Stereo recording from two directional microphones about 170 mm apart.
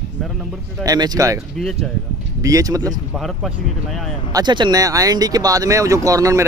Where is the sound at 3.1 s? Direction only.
Centre (ahead or behind).